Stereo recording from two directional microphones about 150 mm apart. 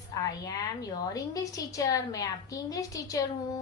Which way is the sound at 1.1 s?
25° left (ahead or behind).